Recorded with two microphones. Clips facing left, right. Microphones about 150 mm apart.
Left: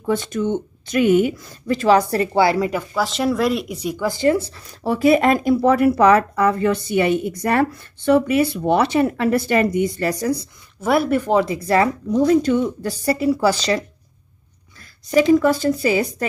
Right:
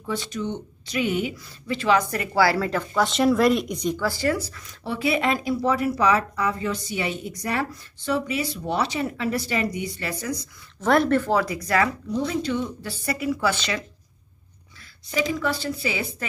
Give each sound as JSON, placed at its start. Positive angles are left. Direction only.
{"t": 0.0, "sound": "speech", "side_deg": 50}
{"t": 2.9, "sound": "speech", "side_deg": 0}
{"t": 10.8, "sound": "speech", "side_deg": 10}
{"t": 12.2, "sound": "speech", "side_deg": 45}
{"t": 15.0, "sound": "speech", "side_deg": 45}